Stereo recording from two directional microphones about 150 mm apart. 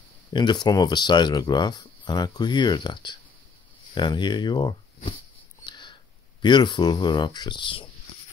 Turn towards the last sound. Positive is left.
turn(degrees=35)  # may be behind; listen again after turning